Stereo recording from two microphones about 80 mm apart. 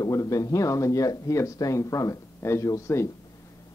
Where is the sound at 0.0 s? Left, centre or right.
Left.